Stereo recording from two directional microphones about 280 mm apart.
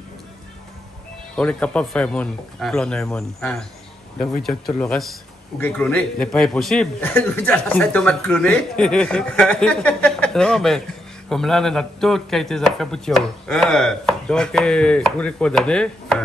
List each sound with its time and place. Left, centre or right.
1.3 s a man's voice: centre